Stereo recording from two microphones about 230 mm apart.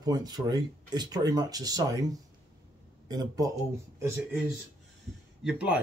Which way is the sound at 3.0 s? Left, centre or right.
Centre.